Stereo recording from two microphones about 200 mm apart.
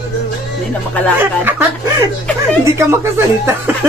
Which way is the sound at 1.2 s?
10° right (ahead or behind).